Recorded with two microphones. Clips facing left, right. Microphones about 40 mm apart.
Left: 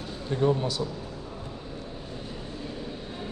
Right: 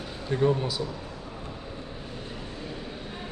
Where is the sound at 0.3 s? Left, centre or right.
Centre.